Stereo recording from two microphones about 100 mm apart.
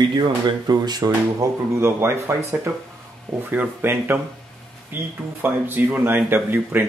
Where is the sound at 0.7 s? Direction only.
40° right (ahead or behind).